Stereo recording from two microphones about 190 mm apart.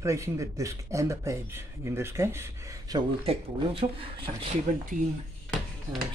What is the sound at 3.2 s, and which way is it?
Speech, 30° right (ahead or behind).